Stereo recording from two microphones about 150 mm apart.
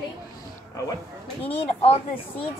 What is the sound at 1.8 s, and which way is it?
Speech, 40° left (ahead or behind).